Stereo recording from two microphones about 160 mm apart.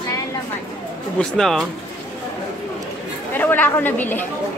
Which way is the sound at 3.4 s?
10° left (ahead or behind).